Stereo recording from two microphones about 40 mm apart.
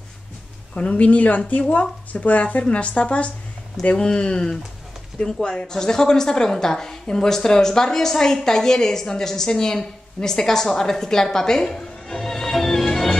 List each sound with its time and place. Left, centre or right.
0.7 s speech: left
3.9 s speech: left
5.7 s a woman's voice: centre